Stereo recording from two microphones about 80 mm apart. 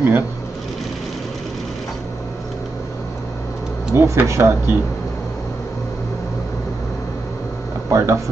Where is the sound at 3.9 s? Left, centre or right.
Right.